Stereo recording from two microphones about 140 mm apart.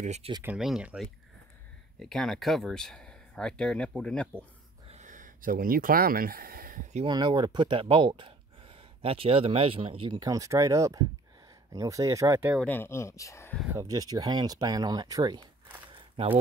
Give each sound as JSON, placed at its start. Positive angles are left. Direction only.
{"t": 0.0, "sound": "speech", "side_deg": -55}
{"t": 0.4, "sound": "speech", "side_deg": -5}
{"t": 4.8, "sound": "a sound", "side_deg": -55}
{"t": 7.1, "sound": "speech", "side_deg": -30}
{"t": 12.6, "sound": "speech", "side_deg": 15}
{"t": 13.7, "sound": "speech", "side_deg": -20}